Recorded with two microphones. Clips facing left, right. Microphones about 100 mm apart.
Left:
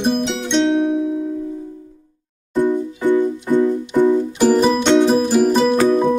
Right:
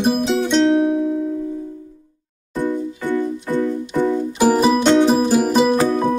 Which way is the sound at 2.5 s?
15° left (ahead or behind).